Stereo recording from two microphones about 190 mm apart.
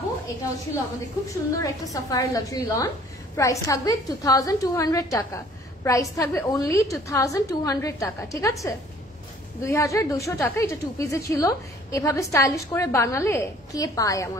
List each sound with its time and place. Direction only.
1.3 s a woman's voice: 15° left (ahead or behind)